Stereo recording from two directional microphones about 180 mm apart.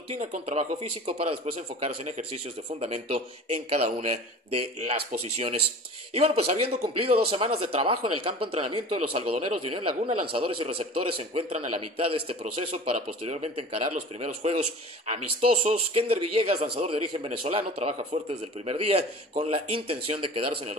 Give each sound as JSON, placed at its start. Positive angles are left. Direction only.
{"t": 0.1, "sound": "a man's voice", "side_deg": -40}